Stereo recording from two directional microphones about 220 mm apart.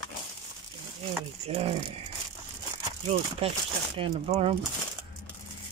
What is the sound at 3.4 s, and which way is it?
Speech, 30° right (ahead or behind).